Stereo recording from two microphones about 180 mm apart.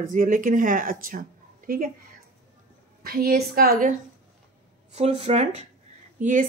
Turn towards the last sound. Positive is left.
turn(degrees=-45)  # may be behind; listen again after turning